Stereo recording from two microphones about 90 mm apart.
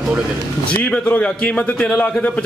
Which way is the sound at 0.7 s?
15° left (ahead or behind).